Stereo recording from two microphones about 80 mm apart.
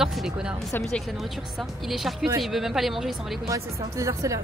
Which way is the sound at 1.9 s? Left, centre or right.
Centre.